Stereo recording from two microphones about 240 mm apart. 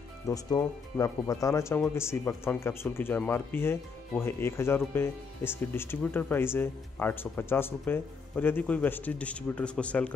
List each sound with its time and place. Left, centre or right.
0.3 s speech: centre